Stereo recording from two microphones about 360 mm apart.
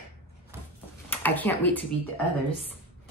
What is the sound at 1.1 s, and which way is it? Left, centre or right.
Speech, centre.